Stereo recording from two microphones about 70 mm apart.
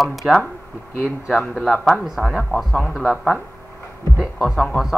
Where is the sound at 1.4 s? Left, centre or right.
Centre.